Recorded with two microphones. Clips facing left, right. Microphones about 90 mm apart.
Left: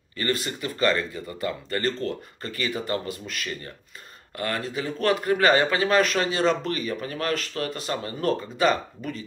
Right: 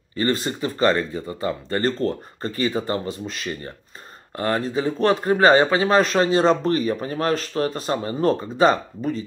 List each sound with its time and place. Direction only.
0.1 s speech: 30° right (ahead or behind)